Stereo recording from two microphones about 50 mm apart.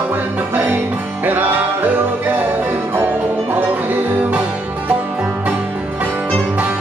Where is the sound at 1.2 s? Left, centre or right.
Right.